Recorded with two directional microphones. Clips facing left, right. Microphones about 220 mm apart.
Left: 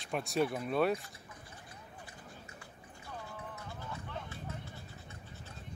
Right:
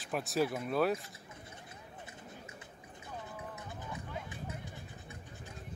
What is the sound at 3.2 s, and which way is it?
Music, 20° right (ahead or behind).